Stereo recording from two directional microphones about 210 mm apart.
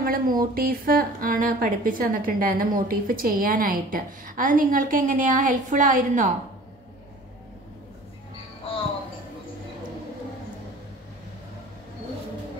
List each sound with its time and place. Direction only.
0.0 s a woman's voice: 45° right (ahead or behind)